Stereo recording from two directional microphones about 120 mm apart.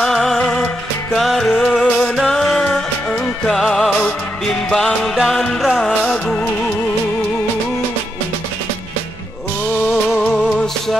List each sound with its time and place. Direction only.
0.0 s music: centre (ahead or behind)
10.1 s music: 5° left (ahead or behind)